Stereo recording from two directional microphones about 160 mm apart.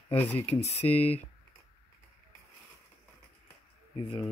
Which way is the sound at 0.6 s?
40° left (ahead or behind).